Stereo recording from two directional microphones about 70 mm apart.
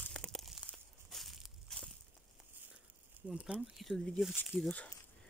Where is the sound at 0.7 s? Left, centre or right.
Centre.